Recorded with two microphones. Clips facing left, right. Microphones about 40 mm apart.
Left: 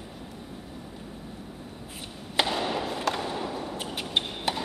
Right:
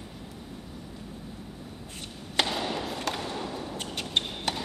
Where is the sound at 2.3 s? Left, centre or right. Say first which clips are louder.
Left 2 dB; centre.